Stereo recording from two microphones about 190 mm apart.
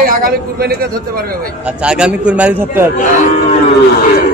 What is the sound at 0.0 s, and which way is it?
Speech, 50° right (ahead or behind).